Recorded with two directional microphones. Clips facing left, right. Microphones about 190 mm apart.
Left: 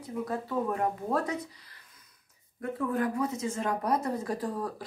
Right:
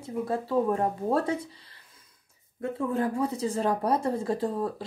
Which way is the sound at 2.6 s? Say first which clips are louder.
Right 2 dB; 25° right (ahead or behind).